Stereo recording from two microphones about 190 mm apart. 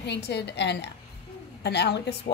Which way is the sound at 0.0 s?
60° left (ahead or behind).